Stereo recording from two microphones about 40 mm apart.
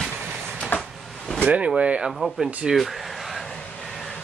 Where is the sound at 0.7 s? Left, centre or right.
Left.